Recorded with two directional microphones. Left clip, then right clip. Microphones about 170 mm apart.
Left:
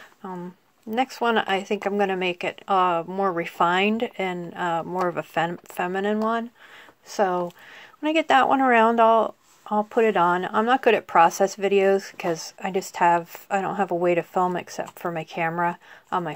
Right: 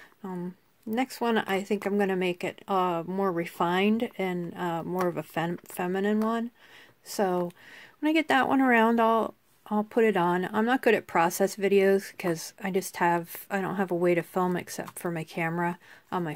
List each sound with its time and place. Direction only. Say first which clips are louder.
0.2 s speech: left 3 dB; 40° right (ahead or behind)
8.0 s speech: left 5 dB; 40° right (ahead or behind)